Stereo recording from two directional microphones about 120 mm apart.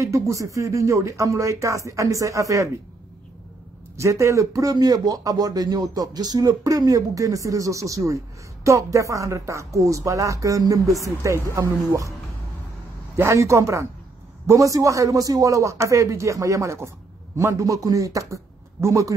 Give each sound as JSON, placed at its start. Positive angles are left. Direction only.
{"t": 0.0, "sound": "speech", "side_deg": -25}
{"t": 3.9, "sound": "speech", "side_deg": -25}
{"t": 13.1, "sound": "speech", "side_deg": -25}